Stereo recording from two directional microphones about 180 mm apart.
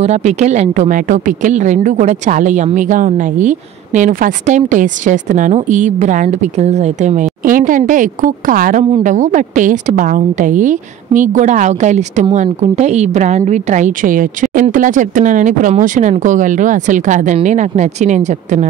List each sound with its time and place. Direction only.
0.0 s speech: 35° right (ahead or behind)